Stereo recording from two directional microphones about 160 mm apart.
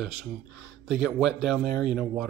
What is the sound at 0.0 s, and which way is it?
Speech, 5° right (ahead or behind).